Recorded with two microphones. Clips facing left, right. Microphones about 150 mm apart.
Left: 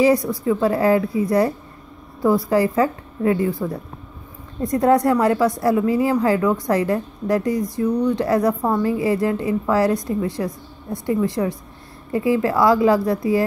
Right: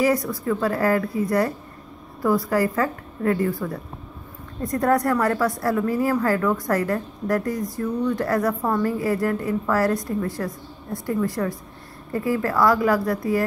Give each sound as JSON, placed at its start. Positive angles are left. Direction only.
{"t": 0.0, "sound": "a woman's voice", "side_deg": 20}
{"t": 2.2, "sound": "a woman's voice", "side_deg": 20}